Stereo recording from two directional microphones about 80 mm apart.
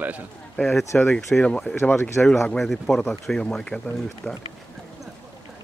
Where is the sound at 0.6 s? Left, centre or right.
Centre.